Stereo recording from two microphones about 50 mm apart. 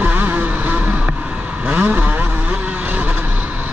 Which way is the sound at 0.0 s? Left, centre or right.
Right.